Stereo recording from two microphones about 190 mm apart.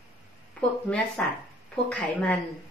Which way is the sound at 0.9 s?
10° left (ahead or behind).